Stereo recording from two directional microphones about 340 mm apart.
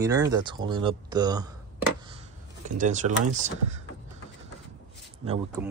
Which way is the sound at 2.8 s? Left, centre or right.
Right.